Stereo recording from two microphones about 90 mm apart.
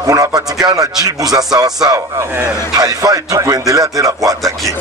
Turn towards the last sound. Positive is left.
turn(degrees=-40)  # may be behind; listen again after turning